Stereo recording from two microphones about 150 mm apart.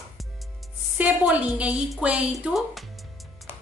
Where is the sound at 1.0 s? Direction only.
10° right (ahead or behind).